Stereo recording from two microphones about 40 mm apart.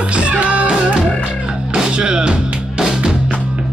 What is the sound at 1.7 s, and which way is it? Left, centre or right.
Music, right.